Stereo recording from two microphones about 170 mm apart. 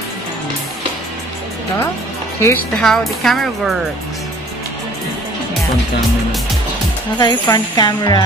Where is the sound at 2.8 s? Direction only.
Centre (ahead or behind).